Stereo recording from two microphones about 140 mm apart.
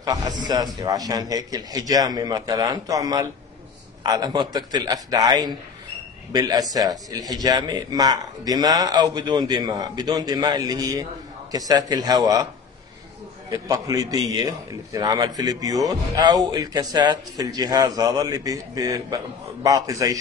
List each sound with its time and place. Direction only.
0.0 s speech: 25° right (ahead or behind)
13.5 s speech: 25° right (ahead or behind)